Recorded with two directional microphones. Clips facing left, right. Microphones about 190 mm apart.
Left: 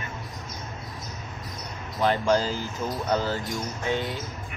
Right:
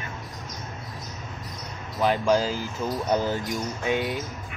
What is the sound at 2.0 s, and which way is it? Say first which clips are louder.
Speech: right 1 dB; 10° right (ahead or behind).